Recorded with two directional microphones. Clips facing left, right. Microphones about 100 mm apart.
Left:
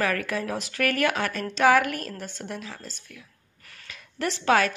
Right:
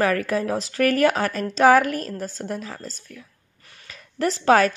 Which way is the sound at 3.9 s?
35° right (ahead or behind).